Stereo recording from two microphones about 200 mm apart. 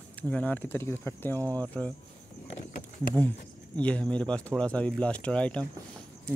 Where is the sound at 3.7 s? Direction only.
5° left (ahead or behind).